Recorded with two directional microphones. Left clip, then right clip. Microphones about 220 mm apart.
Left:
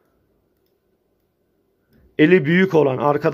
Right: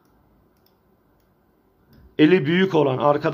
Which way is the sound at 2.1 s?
20° left (ahead or behind).